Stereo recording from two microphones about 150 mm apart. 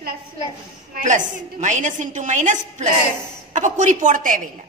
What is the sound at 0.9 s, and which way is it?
Speech, 60° right (ahead or behind).